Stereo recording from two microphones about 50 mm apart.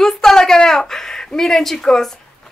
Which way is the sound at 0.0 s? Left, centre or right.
Centre.